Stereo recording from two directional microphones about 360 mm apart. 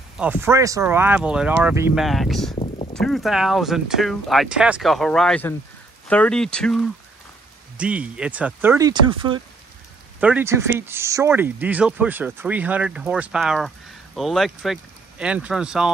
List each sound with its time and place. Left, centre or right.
0.2 s speech: centre
2.5 s a sound: centre
2.9 s speech: centre